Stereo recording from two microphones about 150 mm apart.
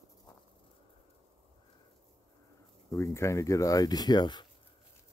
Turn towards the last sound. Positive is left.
turn(degrees=30)  # may be behind; listen again after turning